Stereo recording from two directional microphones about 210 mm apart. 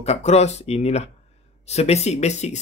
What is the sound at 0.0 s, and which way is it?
Speech, 30° left (ahead or behind).